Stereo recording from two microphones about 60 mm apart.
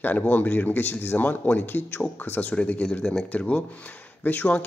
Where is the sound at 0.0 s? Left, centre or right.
Left.